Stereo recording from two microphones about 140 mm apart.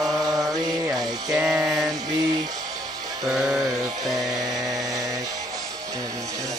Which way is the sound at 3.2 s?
5° right (ahead or behind).